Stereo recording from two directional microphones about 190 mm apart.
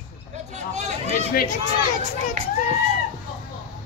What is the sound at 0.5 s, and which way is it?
Hubbub, 35° right (ahead or behind).